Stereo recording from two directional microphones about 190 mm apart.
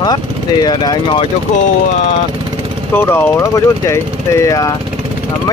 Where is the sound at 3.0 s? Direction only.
10° left (ahead or behind).